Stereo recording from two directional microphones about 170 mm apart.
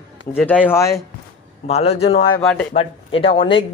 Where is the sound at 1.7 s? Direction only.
35° left (ahead or behind).